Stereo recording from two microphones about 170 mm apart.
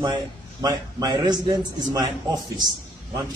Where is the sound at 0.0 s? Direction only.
25° right (ahead or behind).